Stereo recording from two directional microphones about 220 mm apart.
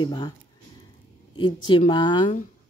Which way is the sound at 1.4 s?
20° left (ahead or behind).